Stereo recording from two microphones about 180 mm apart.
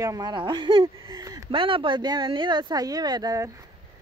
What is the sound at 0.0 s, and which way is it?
A woman's voice, 20° right (ahead or behind).